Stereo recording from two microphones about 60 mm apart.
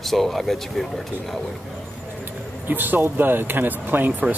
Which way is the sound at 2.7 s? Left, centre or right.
Right.